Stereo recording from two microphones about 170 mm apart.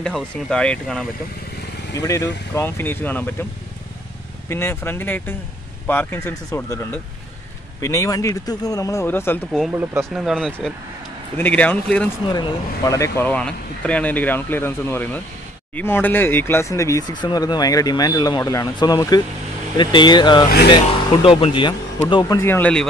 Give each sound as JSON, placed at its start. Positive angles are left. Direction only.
{"t": 0.0, "sound": "speech", "side_deg": 5}
{"t": 2.0, "sound": "speech", "side_deg": 20}
{"t": 4.5, "sound": "speech", "side_deg": 15}
{"t": 9.5, "sound": "speech", "side_deg": -5}
{"t": 10.1, "sound": "speech", "side_deg": 0}
{"t": 12.3, "sound": "speech", "side_deg": 25}
{"t": 20.4, "sound": "speech", "side_deg": 70}
{"t": 20.7, "sound": "speech", "side_deg": 30}